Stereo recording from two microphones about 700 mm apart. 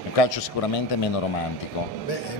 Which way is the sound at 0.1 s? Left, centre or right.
Left.